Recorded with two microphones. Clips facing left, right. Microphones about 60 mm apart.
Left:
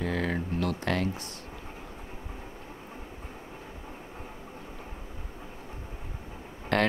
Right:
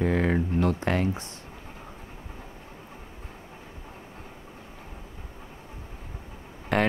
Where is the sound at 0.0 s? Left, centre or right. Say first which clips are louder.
Right 6 dB; right.